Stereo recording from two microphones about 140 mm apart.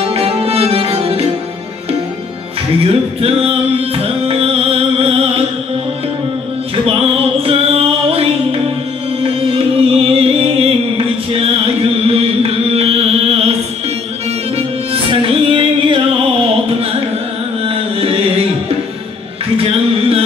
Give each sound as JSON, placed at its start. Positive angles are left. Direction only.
{"t": 0.1, "sound": "music", "side_deg": -45}
{"t": 2.8, "sound": "music", "side_deg": -45}
{"t": 6.9, "sound": "music", "side_deg": -40}
{"t": 11.3, "sound": "chant", "side_deg": -45}
{"t": 14.9, "sound": "music", "side_deg": -40}
{"t": 17.6, "sound": "music", "side_deg": -45}
{"t": 19.5, "sound": "music", "side_deg": -45}